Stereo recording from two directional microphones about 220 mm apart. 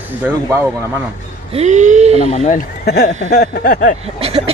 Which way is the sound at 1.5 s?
30° right (ahead or behind).